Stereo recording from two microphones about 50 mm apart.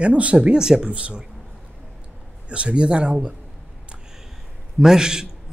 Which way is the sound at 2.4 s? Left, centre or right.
Right.